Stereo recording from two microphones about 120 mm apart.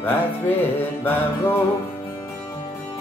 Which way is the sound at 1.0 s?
15° left (ahead or behind).